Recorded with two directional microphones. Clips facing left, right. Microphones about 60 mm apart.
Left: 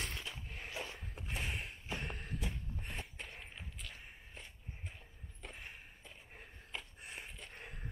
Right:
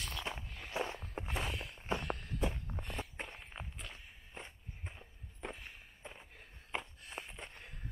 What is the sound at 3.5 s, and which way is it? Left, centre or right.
Walk, right.